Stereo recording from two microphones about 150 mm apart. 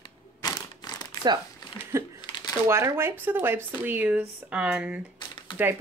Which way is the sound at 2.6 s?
15° right (ahead or behind).